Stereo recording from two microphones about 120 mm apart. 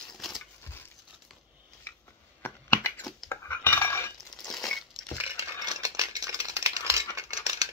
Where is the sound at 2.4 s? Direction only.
20° left (ahead or behind).